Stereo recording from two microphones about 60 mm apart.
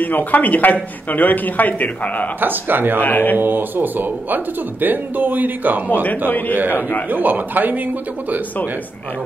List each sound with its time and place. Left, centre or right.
0.0 s speech: left
2.4 s speech: right
3.0 s speech: left
3.3 s speech: right
6.0 s speech: left
7.1 s a man's voice: right